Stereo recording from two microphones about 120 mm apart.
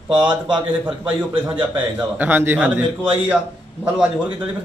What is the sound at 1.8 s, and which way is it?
A man's voice, 15° right (ahead or behind).